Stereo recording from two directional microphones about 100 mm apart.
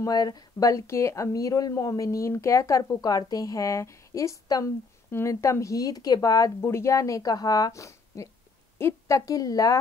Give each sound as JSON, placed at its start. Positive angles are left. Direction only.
{"t": 0.0, "sound": "speech", "side_deg": 40}